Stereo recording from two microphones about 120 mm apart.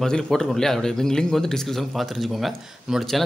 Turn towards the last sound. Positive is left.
turn(degrees=0)  # may be behind; listen again after turning